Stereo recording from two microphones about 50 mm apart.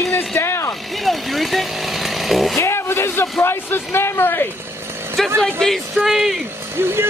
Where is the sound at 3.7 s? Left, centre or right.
Left.